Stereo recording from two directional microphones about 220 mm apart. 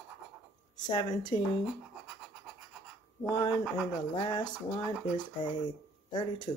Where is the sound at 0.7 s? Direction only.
20° left (ahead or behind).